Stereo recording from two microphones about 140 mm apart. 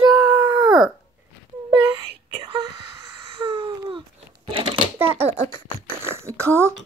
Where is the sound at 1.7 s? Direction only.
30° right (ahead or behind).